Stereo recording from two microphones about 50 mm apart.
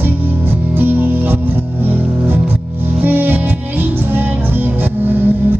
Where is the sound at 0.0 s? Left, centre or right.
Right.